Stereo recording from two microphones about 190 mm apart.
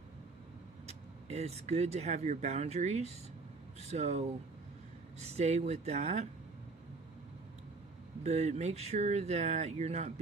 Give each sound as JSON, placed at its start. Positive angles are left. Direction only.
{"t": 0.8, "sound": "speech", "side_deg": -35}
{"t": 8.2, "sound": "speech", "side_deg": -35}